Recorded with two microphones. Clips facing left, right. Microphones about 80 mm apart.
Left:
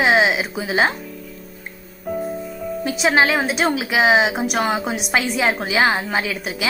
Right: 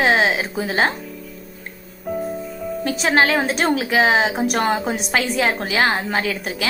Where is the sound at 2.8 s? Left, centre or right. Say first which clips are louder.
Even; centre.